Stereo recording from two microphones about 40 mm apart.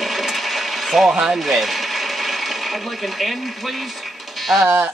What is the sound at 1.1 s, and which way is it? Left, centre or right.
Speech, centre.